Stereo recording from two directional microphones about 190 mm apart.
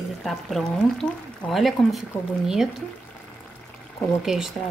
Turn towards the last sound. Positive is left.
turn(degrees=0)  # may be behind; listen again after turning